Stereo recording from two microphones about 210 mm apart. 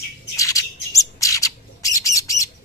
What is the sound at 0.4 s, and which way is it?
Bird, 15° left (ahead or behind).